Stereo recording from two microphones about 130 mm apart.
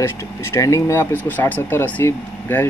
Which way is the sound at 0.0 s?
20° left (ahead or behind).